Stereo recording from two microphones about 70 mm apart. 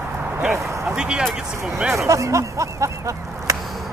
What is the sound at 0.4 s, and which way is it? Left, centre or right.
Speech, centre.